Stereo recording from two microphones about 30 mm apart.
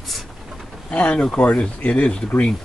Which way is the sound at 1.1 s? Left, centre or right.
Left.